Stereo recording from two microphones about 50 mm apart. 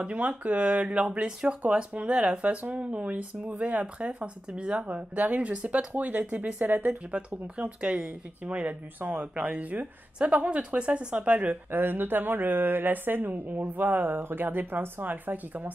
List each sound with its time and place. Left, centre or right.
0.0 s speech: right
1.2 s speech: centre; by 15.7 s right